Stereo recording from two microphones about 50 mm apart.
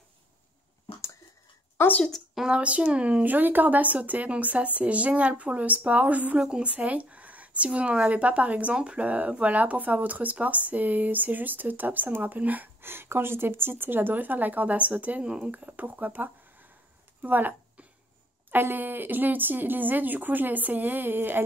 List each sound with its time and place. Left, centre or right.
2.4 s speech: right
6.3 s speech: centre; by 12.6 s right
12.8 s speech: right
15.5 s speech: right